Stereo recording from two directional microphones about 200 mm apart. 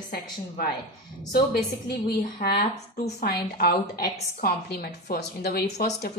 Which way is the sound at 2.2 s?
50° left (ahead or behind).